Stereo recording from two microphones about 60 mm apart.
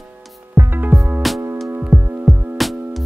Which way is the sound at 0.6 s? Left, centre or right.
Right.